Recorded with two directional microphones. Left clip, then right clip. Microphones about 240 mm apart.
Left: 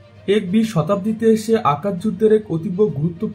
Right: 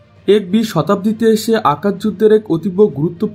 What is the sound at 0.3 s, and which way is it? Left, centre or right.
Speech, right.